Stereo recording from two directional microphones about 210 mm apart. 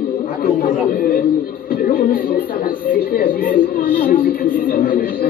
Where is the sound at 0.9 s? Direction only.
45° left (ahead or behind).